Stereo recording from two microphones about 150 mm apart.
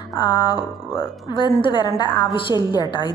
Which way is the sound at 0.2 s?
35° left (ahead or behind).